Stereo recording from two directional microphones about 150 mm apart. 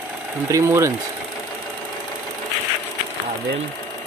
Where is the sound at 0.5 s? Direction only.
20° right (ahead or behind).